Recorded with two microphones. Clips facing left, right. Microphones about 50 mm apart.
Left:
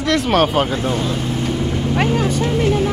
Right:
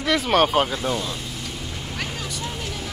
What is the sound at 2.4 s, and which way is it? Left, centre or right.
Speech, left.